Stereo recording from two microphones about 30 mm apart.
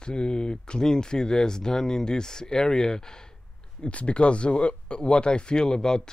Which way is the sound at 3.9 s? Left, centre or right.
Left.